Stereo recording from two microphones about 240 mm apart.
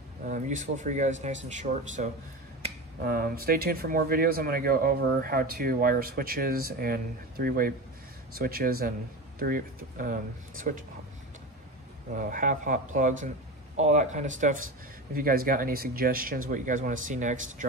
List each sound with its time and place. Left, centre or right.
0.3 s speech: right
12.2 s speech: right